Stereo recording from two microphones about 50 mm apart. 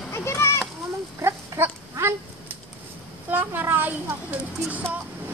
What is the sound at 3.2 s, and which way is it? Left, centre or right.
A child's voice, right.